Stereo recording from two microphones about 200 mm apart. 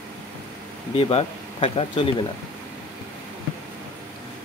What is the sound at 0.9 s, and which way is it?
Speech, 30° left (ahead or behind).